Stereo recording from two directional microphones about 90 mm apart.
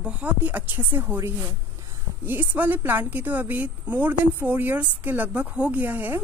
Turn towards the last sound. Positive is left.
turn(degrees=-20)  # may be behind; listen again after turning